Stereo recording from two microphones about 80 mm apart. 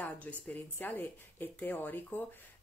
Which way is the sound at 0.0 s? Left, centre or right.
Centre.